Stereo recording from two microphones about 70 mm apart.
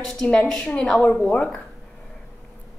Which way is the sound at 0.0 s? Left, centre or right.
Centre.